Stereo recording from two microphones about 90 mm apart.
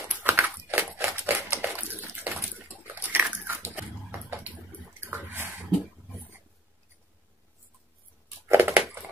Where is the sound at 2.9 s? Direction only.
25° right (ahead or behind).